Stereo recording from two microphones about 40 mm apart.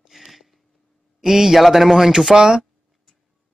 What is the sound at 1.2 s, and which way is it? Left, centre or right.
Speech, centre.